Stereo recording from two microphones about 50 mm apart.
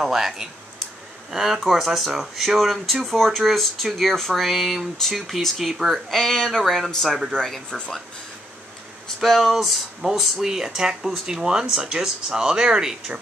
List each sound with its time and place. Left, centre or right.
0.0 s speech: centre
6.6 s speech: centre
6.9 s speech: centre
7.7 s speech: centre
9.0 s speech: centre